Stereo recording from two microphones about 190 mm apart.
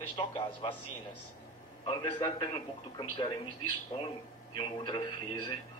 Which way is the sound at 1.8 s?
20° left (ahead or behind).